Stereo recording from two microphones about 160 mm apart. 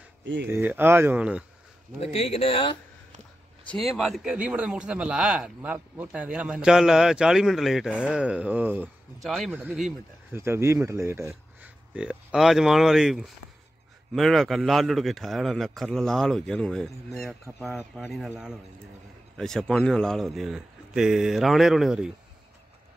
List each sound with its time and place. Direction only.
0.5 s speech: 15° right (ahead or behind)
2.0 s speech: 40° left (ahead or behind)
3.6 s speech: centre (ahead or behind)
9.2 s speech: centre (ahead or behind)
9.5 s speech: 15° right (ahead or behind)